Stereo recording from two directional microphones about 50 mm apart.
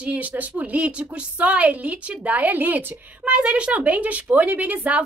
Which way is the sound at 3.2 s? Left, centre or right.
Right.